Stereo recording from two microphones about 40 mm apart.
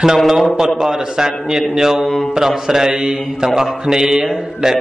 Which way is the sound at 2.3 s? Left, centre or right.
Centre.